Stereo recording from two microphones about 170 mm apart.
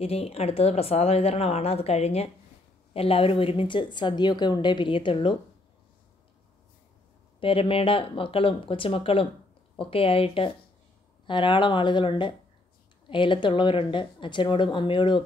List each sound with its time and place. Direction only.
0.0 s a woman's voice: 35° left (ahead or behind)
7.3 s a woman's voice: 30° left (ahead or behind)